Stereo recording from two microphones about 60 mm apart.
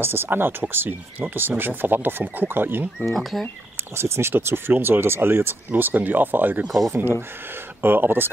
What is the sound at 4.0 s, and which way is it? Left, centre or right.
Speech, right.